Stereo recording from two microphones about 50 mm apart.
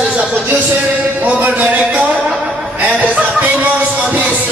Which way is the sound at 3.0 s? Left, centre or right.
Right.